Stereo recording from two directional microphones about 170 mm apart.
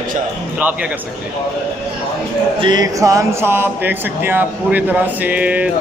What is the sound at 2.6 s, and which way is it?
Speech, 25° right (ahead or behind).